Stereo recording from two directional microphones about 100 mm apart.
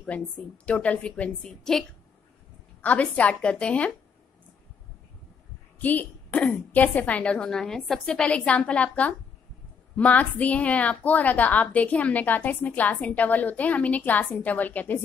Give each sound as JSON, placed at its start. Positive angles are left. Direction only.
{"t": 0.7, "sound": "a woman's voice", "side_deg": 10}
{"t": 2.8, "sound": "a woman's voice", "side_deg": 15}
{"t": 5.8, "sound": "a woman's voice", "side_deg": 15}